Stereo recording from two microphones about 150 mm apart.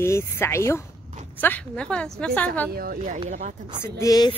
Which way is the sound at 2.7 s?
85° right.